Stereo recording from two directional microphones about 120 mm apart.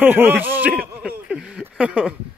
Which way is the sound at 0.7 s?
5° right (ahead or behind).